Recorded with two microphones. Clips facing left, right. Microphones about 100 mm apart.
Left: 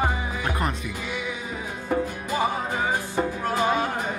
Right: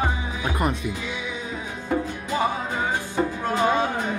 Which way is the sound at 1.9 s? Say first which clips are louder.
Even; 5° left (ahead or behind).